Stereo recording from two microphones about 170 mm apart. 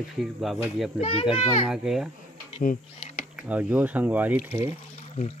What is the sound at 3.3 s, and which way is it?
Speech, 10° right (ahead or behind).